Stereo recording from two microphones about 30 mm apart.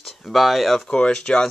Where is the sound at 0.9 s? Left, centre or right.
Left.